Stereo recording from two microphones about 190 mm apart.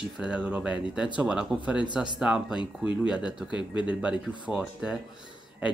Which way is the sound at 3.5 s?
25° left (ahead or behind).